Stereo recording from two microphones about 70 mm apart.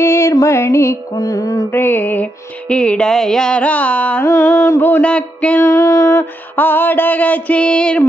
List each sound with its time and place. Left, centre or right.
0.0 s music: left
1.1 s mantra: left
1.7 s a sound: left
2.7 s music: centre
4.2 s mantra: left
5.0 s music: centre
5.6 s music: left
6.5 s a sound: left